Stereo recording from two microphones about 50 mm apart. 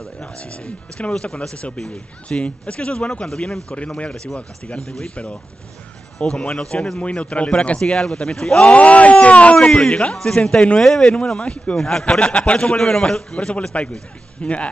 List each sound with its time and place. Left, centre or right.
0.4 s speech: left
1.1 s speech: centre
6.1 s a man's voice: centre
8.7 s speech: left
9.6 s a man's voice: centre
10.8 s a man's voice: centre
11.8 s a man's voice: centre
12.7 s a man's voice: centre